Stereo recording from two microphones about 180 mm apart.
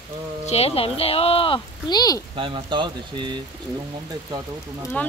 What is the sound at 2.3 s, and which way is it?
Speech, 25° right (ahead or behind).